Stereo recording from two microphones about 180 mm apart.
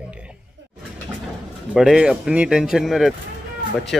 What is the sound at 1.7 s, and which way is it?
Speech, 5° right (ahead or behind).